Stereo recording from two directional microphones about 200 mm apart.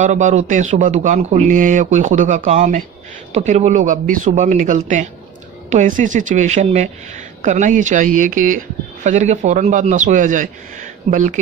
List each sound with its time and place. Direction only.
0.0 s speech: 35° right (ahead or behind)